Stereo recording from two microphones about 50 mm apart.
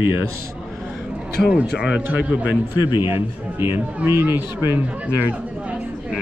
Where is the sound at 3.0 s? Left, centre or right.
Right.